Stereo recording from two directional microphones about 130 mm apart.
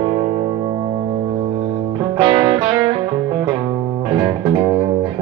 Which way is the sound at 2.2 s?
35° right (ahead or behind).